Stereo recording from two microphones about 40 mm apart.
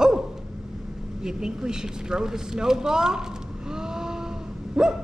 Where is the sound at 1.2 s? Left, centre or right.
Centre.